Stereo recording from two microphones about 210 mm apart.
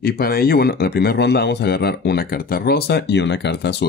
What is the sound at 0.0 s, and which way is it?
Speech, 45° left (ahead or behind).